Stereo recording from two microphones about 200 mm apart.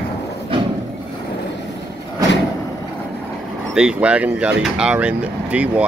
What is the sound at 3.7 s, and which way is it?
Speech, 5° right (ahead or behind).